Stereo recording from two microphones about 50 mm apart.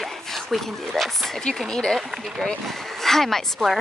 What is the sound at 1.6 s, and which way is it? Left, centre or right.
Speech, centre.